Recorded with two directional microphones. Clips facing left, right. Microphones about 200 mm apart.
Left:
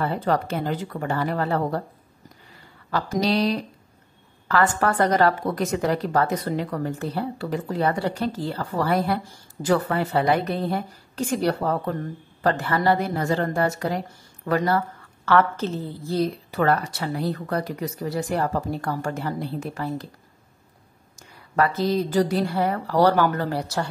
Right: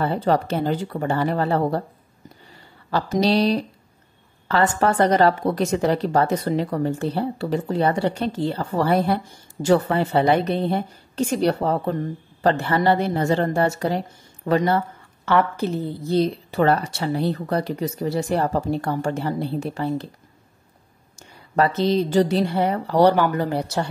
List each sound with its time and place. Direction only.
0.0 s a woman's voice: 30° right (ahead or behind)
2.9 s a woman's voice: 30° right (ahead or behind)
21.3 s a woman's voice: 25° right (ahead or behind)